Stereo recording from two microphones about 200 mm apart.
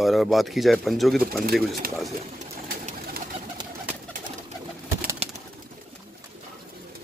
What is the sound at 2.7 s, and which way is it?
Bird, 50° right (ahead or behind).